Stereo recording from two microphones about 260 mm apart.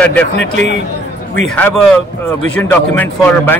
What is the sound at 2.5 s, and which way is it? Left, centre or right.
A man's voice, centre.